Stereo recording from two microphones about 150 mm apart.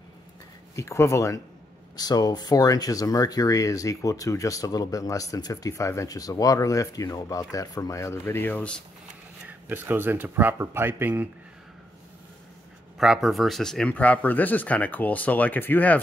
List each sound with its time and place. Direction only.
0.7 s speech: 20° left (ahead or behind)
9.5 s speech: 15° right (ahead or behind)
12.9 s speech: centre (ahead or behind)